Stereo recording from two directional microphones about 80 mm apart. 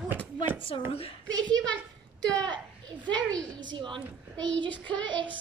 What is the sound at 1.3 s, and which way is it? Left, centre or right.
Speech, right.